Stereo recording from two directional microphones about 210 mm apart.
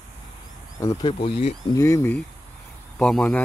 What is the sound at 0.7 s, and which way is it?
Speech, 15° left (ahead or behind).